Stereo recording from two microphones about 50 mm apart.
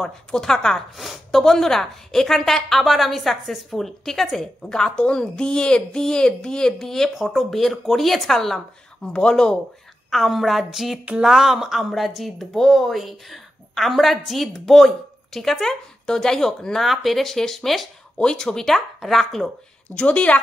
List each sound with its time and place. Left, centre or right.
0.0 s a woman's voice: centre
4.6 s speech: centre
7.2 s a woman's voice: centre
9.1 s speech: centre
10.1 s a woman's voice: centre
16.8 s a woman's voice: centre
18.1 s speech: centre
19.9 s a woman's voice: left